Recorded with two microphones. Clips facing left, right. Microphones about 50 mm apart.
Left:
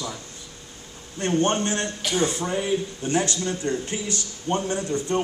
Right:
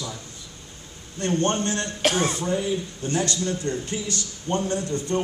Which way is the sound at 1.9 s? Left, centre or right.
Right.